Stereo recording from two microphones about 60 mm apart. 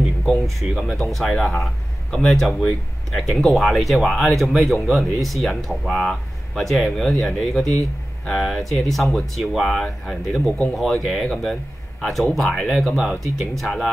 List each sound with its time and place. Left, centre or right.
0.2 s speech: centre